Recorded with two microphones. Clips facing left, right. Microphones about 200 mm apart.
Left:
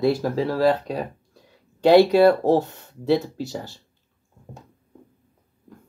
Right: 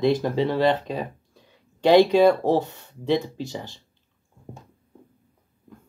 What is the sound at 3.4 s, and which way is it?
Speech, 15° right (ahead or behind).